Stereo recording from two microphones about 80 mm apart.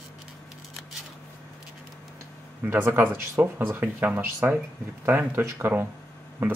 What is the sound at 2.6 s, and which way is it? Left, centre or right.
Speech, right.